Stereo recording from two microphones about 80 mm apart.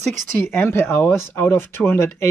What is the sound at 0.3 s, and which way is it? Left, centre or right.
Speech, left.